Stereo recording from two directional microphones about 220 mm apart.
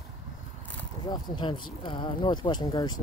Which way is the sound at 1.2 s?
20° left (ahead or behind).